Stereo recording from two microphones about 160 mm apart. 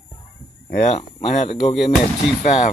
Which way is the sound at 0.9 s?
45° left (ahead or behind).